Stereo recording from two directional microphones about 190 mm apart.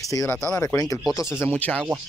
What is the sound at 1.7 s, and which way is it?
Speech, 5° left (ahead or behind).